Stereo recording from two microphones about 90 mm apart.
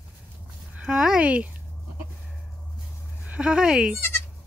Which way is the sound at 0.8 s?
5° right (ahead or behind).